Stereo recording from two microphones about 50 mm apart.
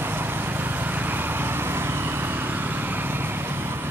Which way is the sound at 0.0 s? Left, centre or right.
Right.